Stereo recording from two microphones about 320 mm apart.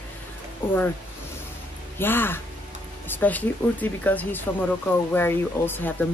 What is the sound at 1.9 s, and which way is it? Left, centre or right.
Speech, centre.